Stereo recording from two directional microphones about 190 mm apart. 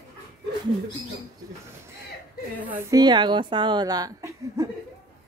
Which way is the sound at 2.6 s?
10° right (ahead or behind).